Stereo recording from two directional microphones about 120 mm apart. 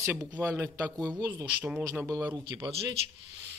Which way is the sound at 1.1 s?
30° right (ahead or behind).